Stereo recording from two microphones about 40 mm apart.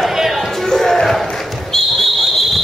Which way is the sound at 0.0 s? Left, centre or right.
Centre.